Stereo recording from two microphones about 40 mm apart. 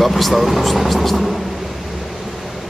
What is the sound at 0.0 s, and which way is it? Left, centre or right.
A man's voice, centre.